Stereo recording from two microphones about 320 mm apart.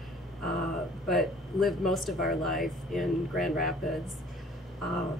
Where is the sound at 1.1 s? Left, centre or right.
Centre.